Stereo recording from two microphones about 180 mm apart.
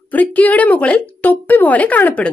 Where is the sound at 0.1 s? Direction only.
10° left (ahead or behind).